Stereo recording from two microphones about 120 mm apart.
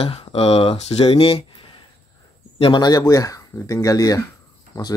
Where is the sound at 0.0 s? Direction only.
50° left (ahead or behind).